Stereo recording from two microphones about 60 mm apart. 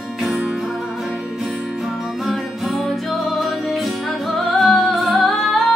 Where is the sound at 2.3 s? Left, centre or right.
Centre.